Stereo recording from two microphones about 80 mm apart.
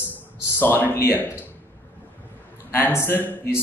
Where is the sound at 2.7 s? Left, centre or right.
Left.